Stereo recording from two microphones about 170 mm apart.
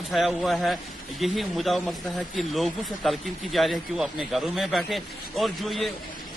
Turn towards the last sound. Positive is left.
turn(degrees=0)  # may be behind; listen again after turning